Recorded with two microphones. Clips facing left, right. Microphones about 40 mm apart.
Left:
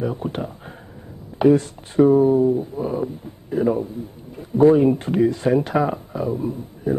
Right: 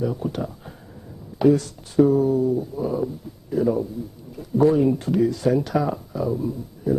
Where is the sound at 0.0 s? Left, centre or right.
Left.